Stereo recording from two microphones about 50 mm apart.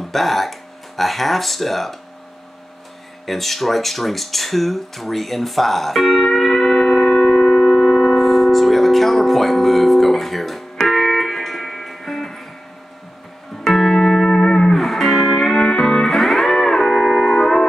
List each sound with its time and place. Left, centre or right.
0.0 s speech: centre
3.3 s speech: centre
7.1 s music: centre
13.7 s music: centre
14.8 s music: centre